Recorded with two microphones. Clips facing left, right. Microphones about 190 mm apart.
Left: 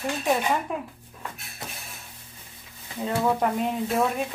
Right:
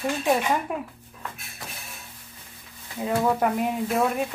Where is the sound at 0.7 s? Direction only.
5° right (ahead or behind).